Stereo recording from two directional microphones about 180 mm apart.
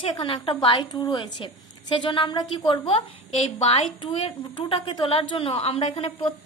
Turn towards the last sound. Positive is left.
turn(degrees=30)  # may be behind; listen again after turning